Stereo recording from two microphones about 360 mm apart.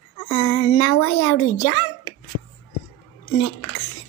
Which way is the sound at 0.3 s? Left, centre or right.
Left.